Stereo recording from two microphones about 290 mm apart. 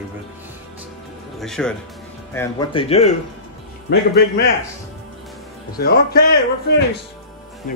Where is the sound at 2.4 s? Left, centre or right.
Centre.